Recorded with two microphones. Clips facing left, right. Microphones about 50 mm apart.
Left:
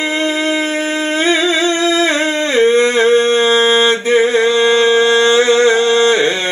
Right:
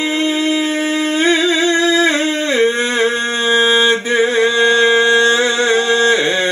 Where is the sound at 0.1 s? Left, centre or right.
Left.